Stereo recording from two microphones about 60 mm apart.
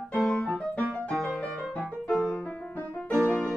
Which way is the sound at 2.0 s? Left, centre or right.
Left.